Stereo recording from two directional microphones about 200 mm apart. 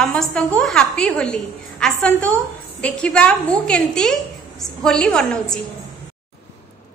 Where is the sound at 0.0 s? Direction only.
5° left (ahead or behind).